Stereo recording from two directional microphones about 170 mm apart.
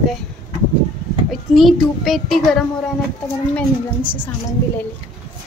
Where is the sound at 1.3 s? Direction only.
Centre (ahead or behind).